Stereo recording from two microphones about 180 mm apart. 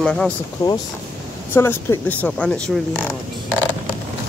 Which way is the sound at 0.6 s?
20° left (ahead or behind).